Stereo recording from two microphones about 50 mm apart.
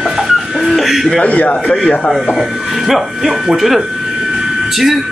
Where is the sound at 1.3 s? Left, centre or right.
Left.